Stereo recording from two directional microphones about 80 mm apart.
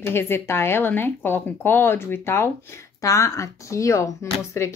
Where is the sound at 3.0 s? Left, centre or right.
Left.